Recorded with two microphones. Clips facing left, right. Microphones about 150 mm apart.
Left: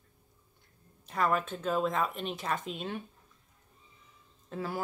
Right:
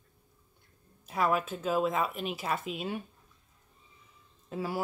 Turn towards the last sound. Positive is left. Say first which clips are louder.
# right 2 dB
turn(degrees=-10)  # may be behind; listen again after turning